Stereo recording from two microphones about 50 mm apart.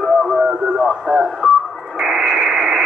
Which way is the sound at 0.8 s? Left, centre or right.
Centre.